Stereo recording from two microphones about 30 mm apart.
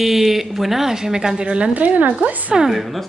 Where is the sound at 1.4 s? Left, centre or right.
Right.